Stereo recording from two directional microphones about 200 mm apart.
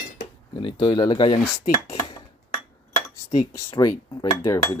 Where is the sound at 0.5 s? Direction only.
25° left (ahead or behind).